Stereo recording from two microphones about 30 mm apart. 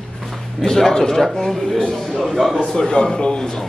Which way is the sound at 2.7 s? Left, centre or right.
Left.